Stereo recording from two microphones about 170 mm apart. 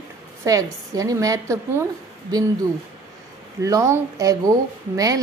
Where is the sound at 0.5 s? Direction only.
20° right (ahead or behind).